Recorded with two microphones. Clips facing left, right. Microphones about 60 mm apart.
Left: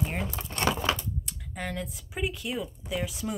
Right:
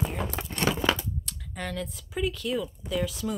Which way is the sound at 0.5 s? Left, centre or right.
Left.